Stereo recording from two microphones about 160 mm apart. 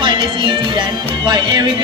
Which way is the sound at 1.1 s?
30° right (ahead or behind).